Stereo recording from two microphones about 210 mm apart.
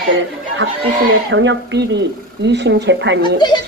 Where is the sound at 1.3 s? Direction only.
60° right (ahead or behind).